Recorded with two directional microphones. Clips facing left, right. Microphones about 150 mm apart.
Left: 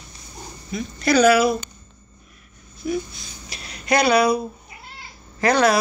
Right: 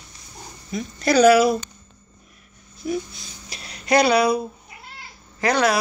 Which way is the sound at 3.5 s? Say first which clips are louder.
Right 1 dB; 30° right (ahead or behind).